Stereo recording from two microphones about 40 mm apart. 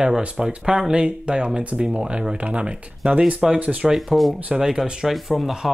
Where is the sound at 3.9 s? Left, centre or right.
Centre.